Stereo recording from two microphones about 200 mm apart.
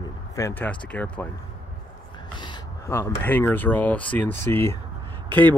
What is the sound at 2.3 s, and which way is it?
Speech, 20° left (ahead or behind).